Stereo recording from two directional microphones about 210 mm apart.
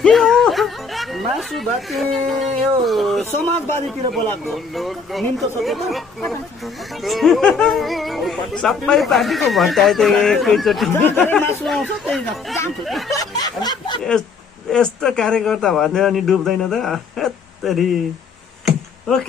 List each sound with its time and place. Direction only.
0.0 s speech: 5° left (ahead or behind)
13.1 s snicker: 20° left (ahead or behind)
14.7 s speech: 5° left (ahead or behind)
18.7 s a sound: centre (ahead or behind)